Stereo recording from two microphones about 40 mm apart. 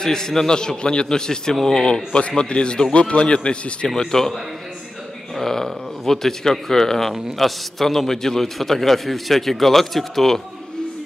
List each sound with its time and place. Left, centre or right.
0.0 s a man's voice: centre
2.1 s a man's voice: left
4.0 s a man's voice: centre